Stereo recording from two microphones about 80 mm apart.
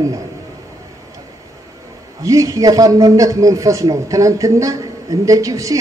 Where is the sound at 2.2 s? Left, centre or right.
Right.